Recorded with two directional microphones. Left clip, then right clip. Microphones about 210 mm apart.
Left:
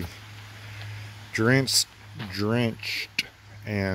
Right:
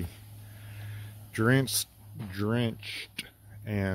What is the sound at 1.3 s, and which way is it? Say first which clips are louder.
Speech: left 5 dB; centre (ahead or behind).